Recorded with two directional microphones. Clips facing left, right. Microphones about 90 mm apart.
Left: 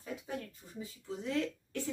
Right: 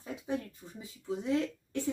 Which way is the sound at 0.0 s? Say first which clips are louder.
Right 5 dB; 20° right (ahead or behind).